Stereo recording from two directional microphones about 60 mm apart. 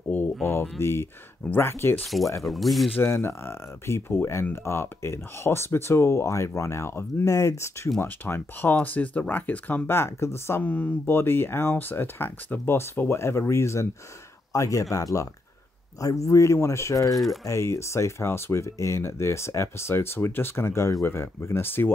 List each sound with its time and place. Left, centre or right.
0.1 s speech: left
2.0 s speech: centre
3.0 s speech: left
8.0 s speech: left
9.8 s speech: left
10.6 s speech: left
14.5 s a man's voice: left
17.1 s speech: centre
17.5 s speech: left